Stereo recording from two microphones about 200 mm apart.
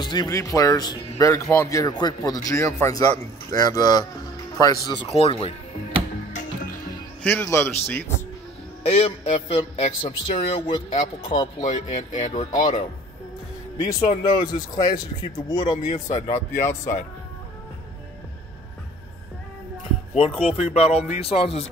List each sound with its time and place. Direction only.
0.0 s speech: 20° left (ahead or behind)
7.2 s speech: 10° left (ahead or behind)
8.8 s speech: 30° left (ahead or behind)
13.7 s speech: 20° left (ahead or behind)
20.2 s speech: 30° left (ahead or behind)